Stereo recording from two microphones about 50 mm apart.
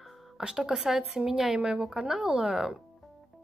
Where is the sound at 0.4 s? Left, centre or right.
Centre.